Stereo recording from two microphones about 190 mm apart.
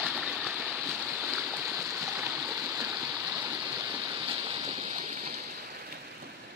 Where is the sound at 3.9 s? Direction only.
25° right (ahead or behind).